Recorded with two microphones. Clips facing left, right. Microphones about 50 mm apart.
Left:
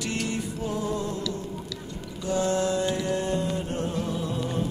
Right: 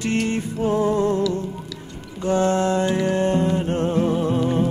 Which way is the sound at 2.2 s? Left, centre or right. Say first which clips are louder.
Right 6 dB; right.